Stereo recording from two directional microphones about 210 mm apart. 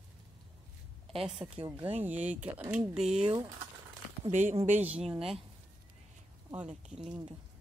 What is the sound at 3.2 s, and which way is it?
Speech, 20° right (ahead or behind).